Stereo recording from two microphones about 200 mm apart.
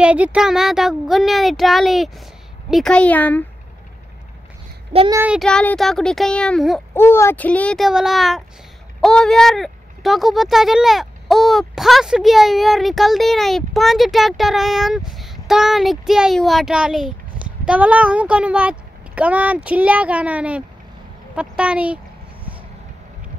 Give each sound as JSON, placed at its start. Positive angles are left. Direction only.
{"t": 0.0, "sound": "a woman's voice", "side_deg": -5}
{"t": 5.1, "sound": "speech", "side_deg": -5}
{"t": 21.4, "sound": "dog", "side_deg": -5}